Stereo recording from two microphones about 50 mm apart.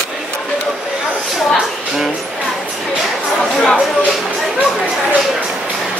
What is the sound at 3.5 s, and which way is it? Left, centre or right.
Speech, centre.